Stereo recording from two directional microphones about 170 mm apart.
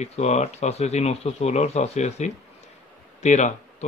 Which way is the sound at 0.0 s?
40° left (ahead or behind).